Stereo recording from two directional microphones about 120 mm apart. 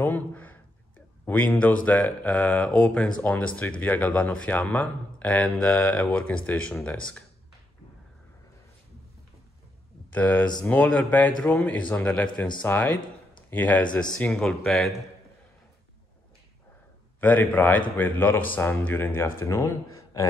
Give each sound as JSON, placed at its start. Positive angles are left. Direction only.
{"t": 0.0, "sound": "speech", "side_deg": 15}
{"t": 10.1, "sound": "speech", "side_deg": 15}
{"t": 17.2, "sound": "speech", "side_deg": 15}